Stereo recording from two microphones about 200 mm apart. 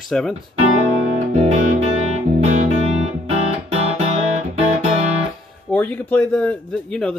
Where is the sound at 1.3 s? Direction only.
35° right (ahead or behind).